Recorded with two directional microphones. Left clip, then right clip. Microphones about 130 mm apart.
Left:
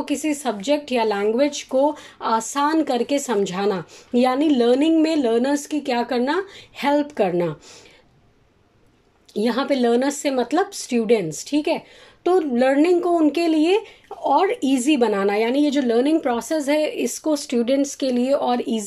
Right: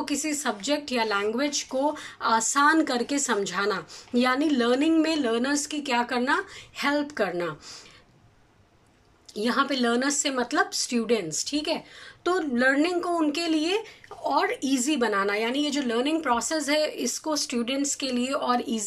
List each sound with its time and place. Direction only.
0.0 s speech: 25° left (ahead or behind)
9.3 s speech: 30° left (ahead or behind)
12.2 s speech: 15° left (ahead or behind)